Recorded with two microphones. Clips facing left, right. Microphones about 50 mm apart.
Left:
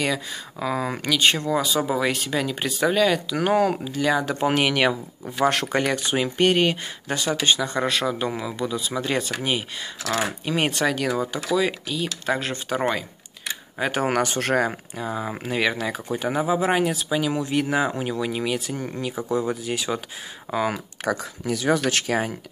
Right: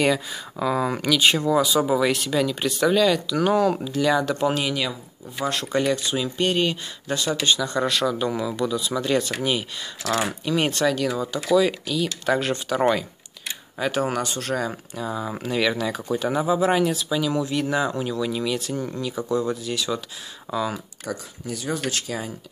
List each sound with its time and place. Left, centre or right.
0.6 s speech: centre
3.3 s speech: left
3.7 s speech: centre
4.6 s speech: left
5.4 s speech: left
11.5 s speech: centre
12.3 s speech: centre
13.7 s speech: left
14.0 s speech: left
15.0 s speech: left
19.2 s speech: centre
20.5 s speech: left
21.0 s speech: left
21.8 s speech: left